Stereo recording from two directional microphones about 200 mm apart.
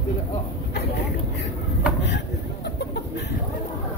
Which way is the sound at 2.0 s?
55° left (ahead or behind).